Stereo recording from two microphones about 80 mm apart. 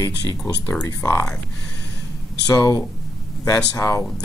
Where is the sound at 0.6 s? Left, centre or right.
Left.